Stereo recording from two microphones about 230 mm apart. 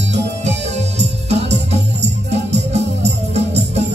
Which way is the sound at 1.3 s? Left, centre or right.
Right.